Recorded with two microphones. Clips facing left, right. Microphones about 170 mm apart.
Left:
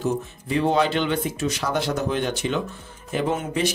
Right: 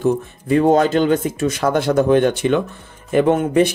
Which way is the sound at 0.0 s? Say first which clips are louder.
Right 7 dB; 50° right (ahead or behind).